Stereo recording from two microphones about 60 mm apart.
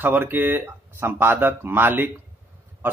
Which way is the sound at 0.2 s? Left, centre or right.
Right.